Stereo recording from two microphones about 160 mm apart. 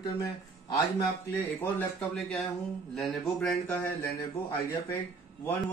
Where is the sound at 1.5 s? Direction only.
10° left (ahead or behind).